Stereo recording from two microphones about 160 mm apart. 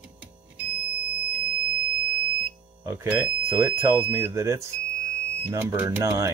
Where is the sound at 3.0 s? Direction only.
10° right (ahead or behind).